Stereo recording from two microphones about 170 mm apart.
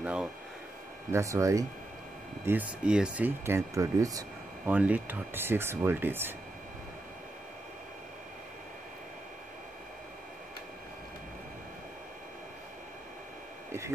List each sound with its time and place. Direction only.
0.0 s speech: 5° right (ahead or behind)
1.1 s speech: 20° right (ahead or behind)
4.7 s speech: 10° right (ahead or behind)
13.7 s speech: 15° right (ahead or behind)